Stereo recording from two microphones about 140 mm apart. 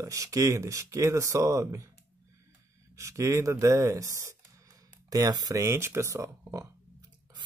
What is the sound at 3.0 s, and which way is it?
Speech, 20° right (ahead or behind).